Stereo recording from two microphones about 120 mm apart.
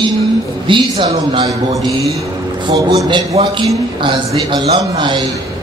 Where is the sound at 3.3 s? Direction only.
55° right (ahead or behind).